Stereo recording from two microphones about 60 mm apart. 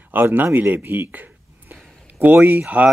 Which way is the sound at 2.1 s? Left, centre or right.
Right.